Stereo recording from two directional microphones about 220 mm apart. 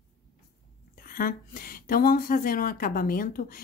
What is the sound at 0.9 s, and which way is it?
Speech, 40° left (ahead or behind).